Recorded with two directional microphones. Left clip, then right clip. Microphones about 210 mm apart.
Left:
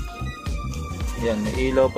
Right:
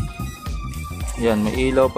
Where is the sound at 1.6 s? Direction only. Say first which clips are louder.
Right 1 dB; 15° right (ahead or behind).